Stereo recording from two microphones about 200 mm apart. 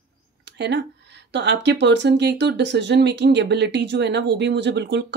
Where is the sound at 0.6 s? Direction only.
60° right (ahead or behind).